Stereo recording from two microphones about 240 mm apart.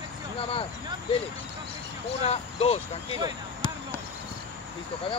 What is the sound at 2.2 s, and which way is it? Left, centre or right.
Speech, left.